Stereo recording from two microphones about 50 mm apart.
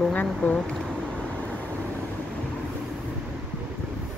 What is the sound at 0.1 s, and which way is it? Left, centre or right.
Speech, left.